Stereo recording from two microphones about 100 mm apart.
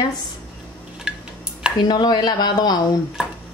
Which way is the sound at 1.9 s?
45° left (ahead or behind).